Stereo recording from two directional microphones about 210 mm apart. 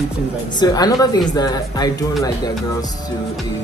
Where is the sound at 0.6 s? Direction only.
20° left (ahead or behind).